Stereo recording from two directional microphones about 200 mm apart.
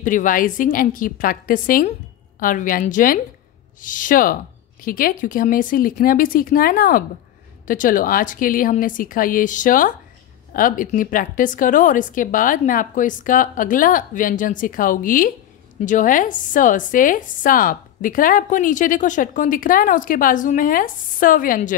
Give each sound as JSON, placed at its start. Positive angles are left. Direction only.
{"t": 0.0, "sound": "a woman's voice", "side_deg": 40}